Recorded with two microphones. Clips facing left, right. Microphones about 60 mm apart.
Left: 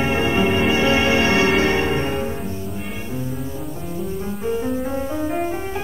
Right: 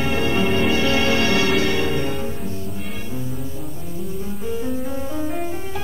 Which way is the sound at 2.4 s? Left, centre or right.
Centre.